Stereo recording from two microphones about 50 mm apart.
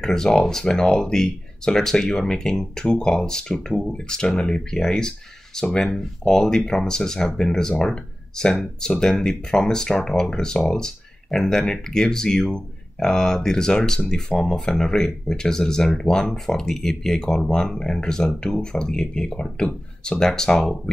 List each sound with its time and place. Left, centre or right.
0.0 s speech: centre